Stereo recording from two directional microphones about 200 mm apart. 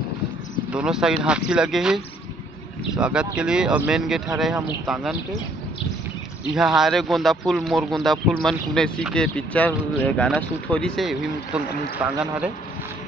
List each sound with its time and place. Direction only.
0.7 s speech: 5° right (ahead or behind)
3.0 s speech: 5° right (ahead or behind)
6.5 s speech: 5° right (ahead or behind)